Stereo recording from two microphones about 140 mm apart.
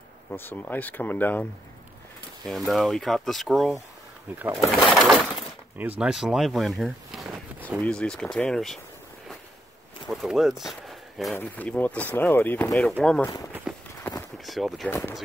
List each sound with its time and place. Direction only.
0.3 s speech: 10° left (ahead or behind)
2.4 s speech: centre (ahead or behind)
5.8 s speech: 10° right (ahead or behind)
10.0 s speech: centre (ahead or behind)
11.3 s speech: 10° left (ahead or behind)
13.7 s run: 5° right (ahead or behind)
14.0 s a sound: 10° left (ahead or behind)
14.4 s a sound: centre (ahead or behind)
14.9 s speech: 15° left (ahead or behind)